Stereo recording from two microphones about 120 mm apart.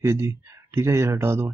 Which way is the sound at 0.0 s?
20° right (ahead or behind).